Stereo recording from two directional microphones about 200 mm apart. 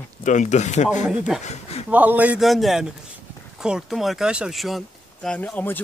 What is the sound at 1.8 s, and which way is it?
A man's voice, 10° right (ahead or behind).